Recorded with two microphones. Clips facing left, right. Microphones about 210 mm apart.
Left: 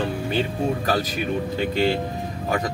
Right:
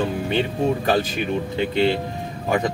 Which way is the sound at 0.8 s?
25° right (ahead or behind).